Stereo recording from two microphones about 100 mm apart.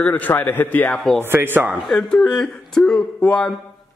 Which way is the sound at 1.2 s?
20° right (ahead or behind).